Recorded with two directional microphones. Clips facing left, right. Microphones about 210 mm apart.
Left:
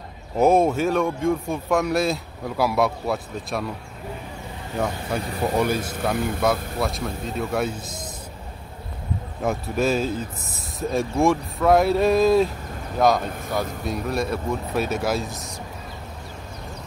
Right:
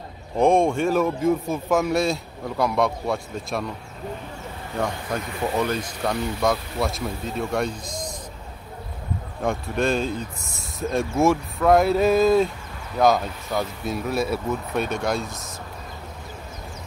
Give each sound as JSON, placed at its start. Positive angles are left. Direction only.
{"t": 0.4, "sound": "speech", "side_deg": 5}
{"t": 4.7, "sound": "speech", "side_deg": 5}
{"t": 5.2, "sound": "speech", "side_deg": 35}
{"t": 5.6, "sound": "speech", "side_deg": 10}
{"t": 6.1, "sound": "speech", "side_deg": 55}
{"t": 6.4, "sound": "speech", "side_deg": 0}
{"t": 9.4, "sound": "speech", "side_deg": 5}